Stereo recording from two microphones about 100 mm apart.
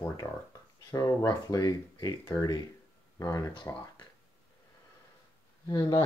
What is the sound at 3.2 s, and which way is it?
Speech, 35° left (ahead or behind).